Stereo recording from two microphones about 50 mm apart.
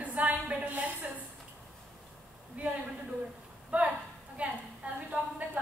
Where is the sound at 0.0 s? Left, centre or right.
Right.